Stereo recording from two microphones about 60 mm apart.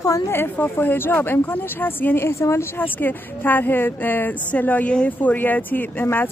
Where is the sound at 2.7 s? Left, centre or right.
Left.